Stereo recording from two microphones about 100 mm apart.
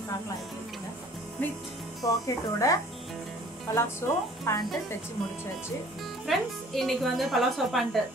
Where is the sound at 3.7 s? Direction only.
25° left (ahead or behind).